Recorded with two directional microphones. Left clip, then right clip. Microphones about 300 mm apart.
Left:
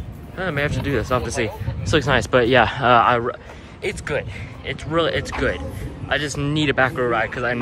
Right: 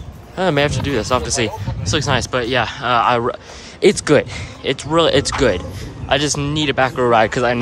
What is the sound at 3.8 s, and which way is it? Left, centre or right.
Speech, centre.